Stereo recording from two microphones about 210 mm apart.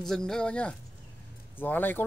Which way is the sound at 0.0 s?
Centre (ahead or behind).